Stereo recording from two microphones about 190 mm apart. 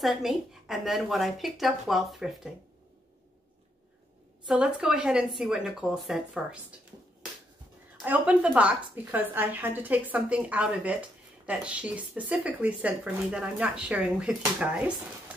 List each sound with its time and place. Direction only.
0.0 s a woman's voice: centre (ahead or behind)
4.5 s a woman's voice: 5° right (ahead or behind)
8.0 s a woman's voice: 10° right (ahead or behind)